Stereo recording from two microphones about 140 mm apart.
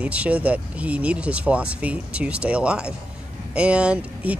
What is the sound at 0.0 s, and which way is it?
Speech, 10° right (ahead or behind).